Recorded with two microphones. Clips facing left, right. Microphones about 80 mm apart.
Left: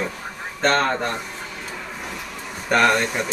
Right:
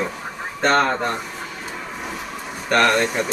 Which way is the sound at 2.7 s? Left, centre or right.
Centre.